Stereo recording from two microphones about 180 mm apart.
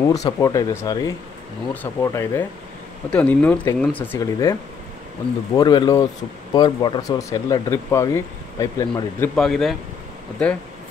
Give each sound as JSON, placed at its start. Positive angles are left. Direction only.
{"t": 0.0, "sound": "speech", "side_deg": 20}
{"t": 5.6, "sound": "speech", "side_deg": 25}
{"t": 9.3, "sound": "speech", "side_deg": 0}